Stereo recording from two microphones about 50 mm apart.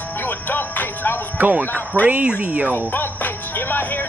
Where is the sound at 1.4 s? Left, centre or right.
Right.